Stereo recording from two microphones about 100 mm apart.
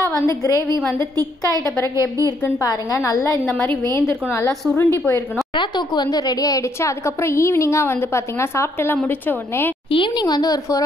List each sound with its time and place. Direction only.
2.6 s a woman's voice: 35° left (ahead or behind)
5.6 s a woman's voice: 45° left (ahead or behind); by 9.7 s 20° left (ahead or behind)
9.8 s speech: 60° left (ahead or behind)
10.2 s a woman's voice: 40° left (ahead or behind)